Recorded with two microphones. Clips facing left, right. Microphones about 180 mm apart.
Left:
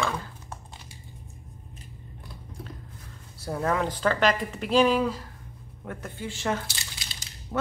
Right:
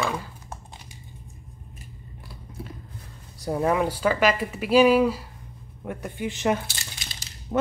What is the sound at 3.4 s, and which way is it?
Speech, 15° right (ahead or behind).